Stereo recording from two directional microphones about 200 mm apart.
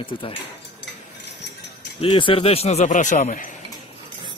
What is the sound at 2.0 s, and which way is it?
Speech, 25° left (ahead or behind).